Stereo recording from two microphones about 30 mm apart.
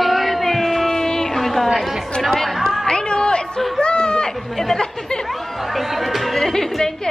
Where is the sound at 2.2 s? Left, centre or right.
Centre.